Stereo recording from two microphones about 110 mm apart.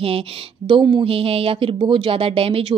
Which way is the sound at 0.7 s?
45° right (ahead or behind).